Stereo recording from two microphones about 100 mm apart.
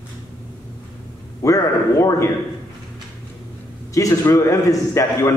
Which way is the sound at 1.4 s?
30° left (ahead or behind).